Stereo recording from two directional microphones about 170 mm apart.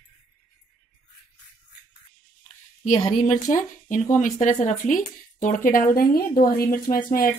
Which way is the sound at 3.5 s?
45° left (ahead or behind).